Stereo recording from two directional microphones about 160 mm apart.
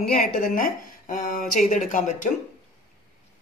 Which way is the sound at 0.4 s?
55° left (ahead or behind).